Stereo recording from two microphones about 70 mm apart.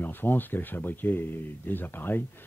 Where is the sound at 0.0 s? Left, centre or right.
Left.